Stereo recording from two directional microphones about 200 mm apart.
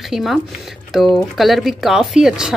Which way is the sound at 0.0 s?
Centre (ahead or behind).